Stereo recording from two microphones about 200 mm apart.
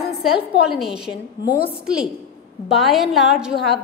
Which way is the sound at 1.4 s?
50° left (ahead or behind).